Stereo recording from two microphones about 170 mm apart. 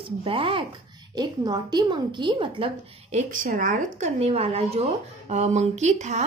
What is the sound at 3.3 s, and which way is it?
Speech, 50° right (ahead or behind).